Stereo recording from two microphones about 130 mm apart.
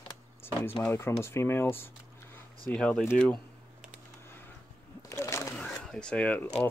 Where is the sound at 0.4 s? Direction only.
15° left (ahead or behind).